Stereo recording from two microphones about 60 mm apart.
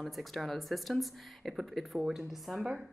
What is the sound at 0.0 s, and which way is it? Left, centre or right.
Speech, centre.